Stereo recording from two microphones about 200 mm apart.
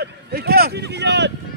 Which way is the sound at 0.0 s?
50° right (ahead or behind).